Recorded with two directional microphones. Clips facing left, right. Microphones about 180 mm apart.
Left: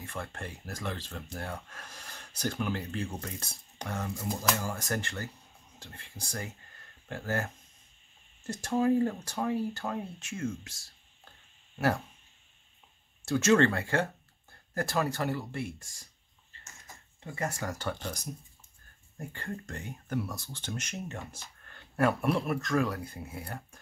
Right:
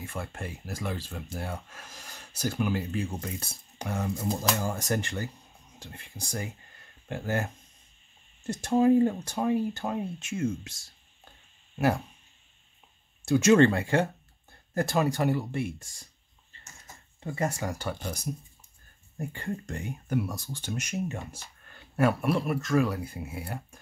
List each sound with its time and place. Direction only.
0.0 s speech: 5° right (ahead or behind)
4.2 s speech: 20° right (ahead or behind)
13.2 s speech: 15° right (ahead or behind)
17.2 s speech: 20° right (ahead or behind)